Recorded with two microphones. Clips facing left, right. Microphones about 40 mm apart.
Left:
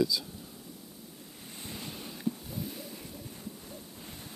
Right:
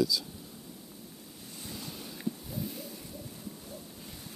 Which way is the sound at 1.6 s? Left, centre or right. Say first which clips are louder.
Left 1 dB; left.